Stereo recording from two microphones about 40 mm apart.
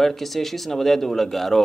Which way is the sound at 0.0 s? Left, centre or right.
Centre.